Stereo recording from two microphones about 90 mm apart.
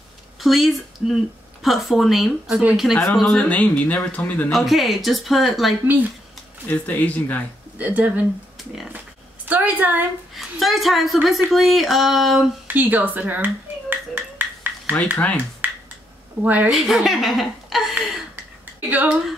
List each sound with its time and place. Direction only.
0.4 s speech: centre (ahead or behind); by 4.5 s 20° left (ahead or behind)
4.5 s speech: centre (ahead or behind)
6.7 s speech: 15° left (ahead or behind)
7.7 s speech: 20° right (ahead or behind)
9.5 s a woman's voice: 20° right (ahead or behind)
10.3 s speech: centre (ahead or behind)
12.6 s a sound: 20° right (ahead or behind)
15.1 s speech: 20° left (ahead or behind)
15.6 s finger snapping: 20° right (ahead or behind)
16.4 s speech: 20° right (ahead or behind)
16.7 s speech: centre (ahead or behind)
17.9 s a sound: 15° right (ahead or behind)